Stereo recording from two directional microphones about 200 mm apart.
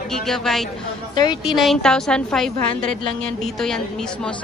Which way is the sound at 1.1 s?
20° left (ahead or behind).